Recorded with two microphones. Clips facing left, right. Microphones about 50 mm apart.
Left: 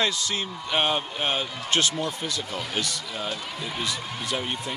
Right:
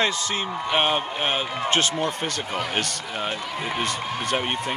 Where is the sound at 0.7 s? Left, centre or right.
Right.